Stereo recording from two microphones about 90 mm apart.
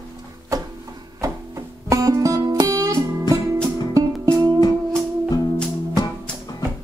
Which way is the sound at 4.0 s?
35° right (ahead or behind).